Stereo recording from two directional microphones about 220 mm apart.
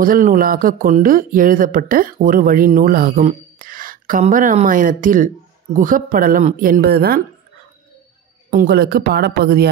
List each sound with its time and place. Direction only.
0.0 s speech: 40° right (ahead or behind)
8.5 s speech: 40° right (ahead or behind)